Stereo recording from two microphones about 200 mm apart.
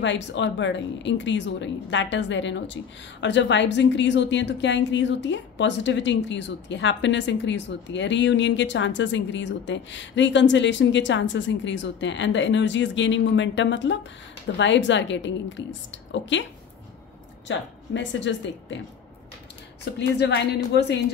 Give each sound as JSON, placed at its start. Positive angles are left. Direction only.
{"t": 0.0, "sound": "a woman's voice", "side_deg": 65}
{"t": 17.5, "sound": "a woman's voice", "side_deg": 65}
{"t": 19.8, "sound": "a woman's voice", "side_deg": 60}